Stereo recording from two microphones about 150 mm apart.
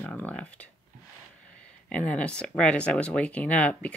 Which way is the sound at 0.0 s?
10° left (ahead or behind).